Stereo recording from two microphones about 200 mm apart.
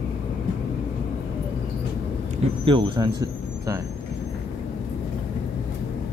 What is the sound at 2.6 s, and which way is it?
Speech, 25° right (ahead or behind).